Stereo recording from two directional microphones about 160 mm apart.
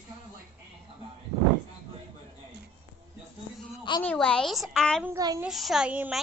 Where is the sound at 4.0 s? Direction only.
5° left (ahead or behind).